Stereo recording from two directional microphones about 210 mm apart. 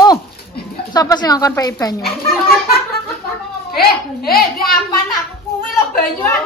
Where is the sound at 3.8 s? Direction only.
45° left (ahead or behind).